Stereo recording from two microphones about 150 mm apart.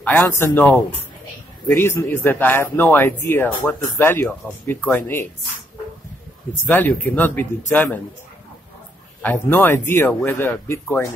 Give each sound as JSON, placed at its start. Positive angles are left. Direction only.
{"t": 0.0, "sound": "speech", "side_deg": 10}
{"t": 6.6, "sound": "speech", "side_deg": 10}
{"t": 9.2, "sound": "speech", "side_deg": 10}